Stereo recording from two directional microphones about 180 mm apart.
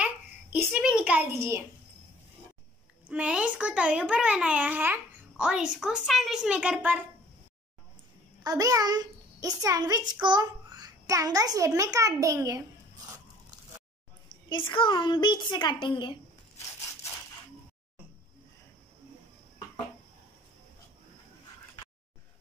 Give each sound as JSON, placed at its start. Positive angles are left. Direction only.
{"t": 0.0, "sound": "a sound", "side_deg": -10}
{"t": 3.1, "sound": "a child's voice", "side_deg": -5}
{"t": 8.5, "sound": "a child's voice", "side_deg": -20}
{"t": 14.7, "sound": "a woman's voice", "side_deg": 25}